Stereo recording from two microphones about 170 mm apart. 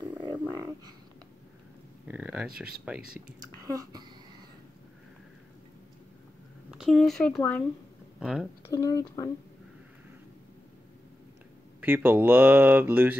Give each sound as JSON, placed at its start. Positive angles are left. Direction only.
{"t": 0.2, "sound": "a sound", "side_deg": -25}
{"t": 2.0, "sound": "speech", "side_deg": -5}
{"t": 3.3, "sound": "a woman's voice", "side_deg": -20}
{"t": 6.7, "sound": "speech", "side_deg": 0}
{"t": 8.2, "sound": "speech", "side_deg": -5}
{"t": 8.6, "sound": "speech", "side_deg": 20}
{"t": 11.8, "sound": "speech", "side_deg": -10}